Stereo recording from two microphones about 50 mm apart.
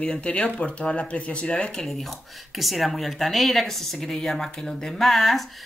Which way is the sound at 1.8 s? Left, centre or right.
Centre.